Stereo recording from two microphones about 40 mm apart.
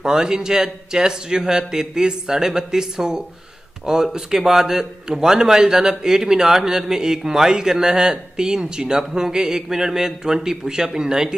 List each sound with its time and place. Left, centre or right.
0.0 s a man's voice: centre